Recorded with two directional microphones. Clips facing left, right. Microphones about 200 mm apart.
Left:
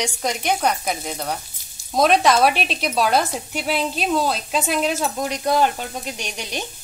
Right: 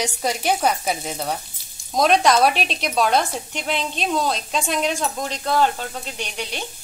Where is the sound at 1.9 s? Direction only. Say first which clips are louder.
Left 1 dB; centre (ahead or behind).